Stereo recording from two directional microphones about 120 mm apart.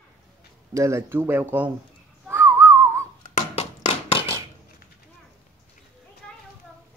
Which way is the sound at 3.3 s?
60° left (ahead or behind).